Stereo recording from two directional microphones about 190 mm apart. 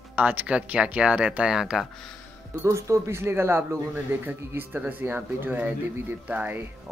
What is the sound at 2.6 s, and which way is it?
Speech, 15° right (ahead or behind).